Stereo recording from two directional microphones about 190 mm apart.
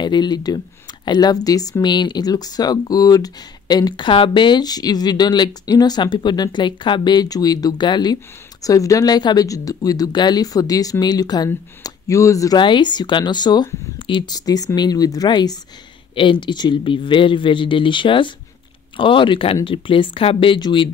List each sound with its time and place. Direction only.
0.0 s speech: 25° left (ahead or behind)